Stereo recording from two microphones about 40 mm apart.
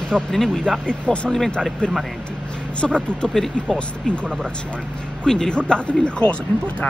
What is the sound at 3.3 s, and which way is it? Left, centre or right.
Speech, centre.